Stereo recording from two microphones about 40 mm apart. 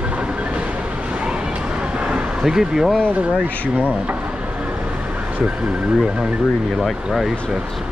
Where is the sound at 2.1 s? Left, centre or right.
Centre.